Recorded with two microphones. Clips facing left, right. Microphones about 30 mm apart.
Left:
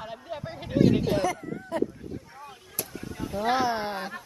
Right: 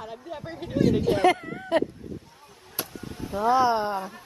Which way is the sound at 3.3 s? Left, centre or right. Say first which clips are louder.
Right 4 dB; right.